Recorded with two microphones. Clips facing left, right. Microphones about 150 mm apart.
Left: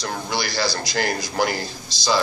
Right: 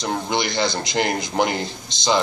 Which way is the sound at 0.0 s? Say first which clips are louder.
Right 3 dB; 20° right (ahead or behind).